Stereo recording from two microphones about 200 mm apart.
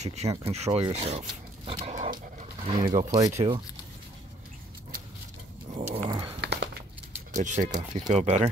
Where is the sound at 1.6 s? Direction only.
30° right (ahead or behind).